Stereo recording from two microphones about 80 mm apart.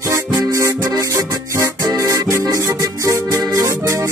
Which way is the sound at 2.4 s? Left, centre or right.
Right.